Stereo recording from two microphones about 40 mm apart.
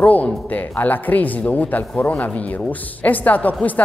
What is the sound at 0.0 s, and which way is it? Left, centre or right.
A man's voice, left.